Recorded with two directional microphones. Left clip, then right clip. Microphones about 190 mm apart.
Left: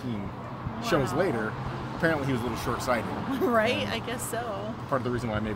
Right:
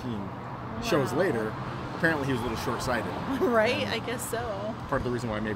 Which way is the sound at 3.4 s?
15° right (ahead or behind).